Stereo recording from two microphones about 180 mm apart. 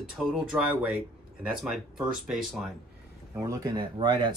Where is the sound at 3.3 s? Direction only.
15° right (ahead or behind).